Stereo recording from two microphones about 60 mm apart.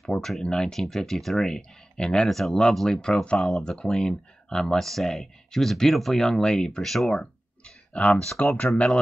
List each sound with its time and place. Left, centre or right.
0.0 s speech: centre
2.2 s speech: centre
7.2 s a sound: centre
8.7 s speech: centre